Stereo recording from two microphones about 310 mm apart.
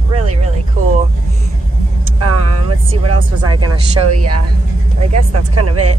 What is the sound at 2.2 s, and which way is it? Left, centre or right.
Vehicle, right.